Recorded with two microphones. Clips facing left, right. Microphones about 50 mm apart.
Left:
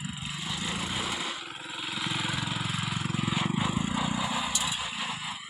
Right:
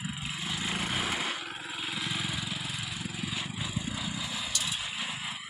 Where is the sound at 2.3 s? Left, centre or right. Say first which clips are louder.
Left 4 dB; left.